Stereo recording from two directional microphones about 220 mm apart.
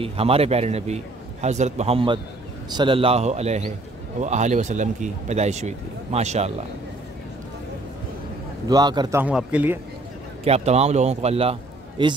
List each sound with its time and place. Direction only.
0.0 s speech: 25° right (ahead or behind)
8.6 s a man's voice: 20° right (ahead or behind)
9.2 s a man's voice: 5° right (ahead or behind)
10.4 s speech: 30° right (ahead or behind)